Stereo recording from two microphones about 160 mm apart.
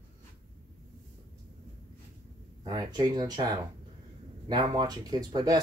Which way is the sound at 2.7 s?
25° right (ahead or behind).